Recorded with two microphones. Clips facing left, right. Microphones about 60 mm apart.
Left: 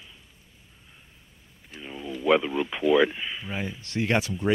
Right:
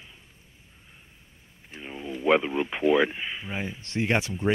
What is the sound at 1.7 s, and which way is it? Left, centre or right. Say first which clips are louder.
Speech: even; right.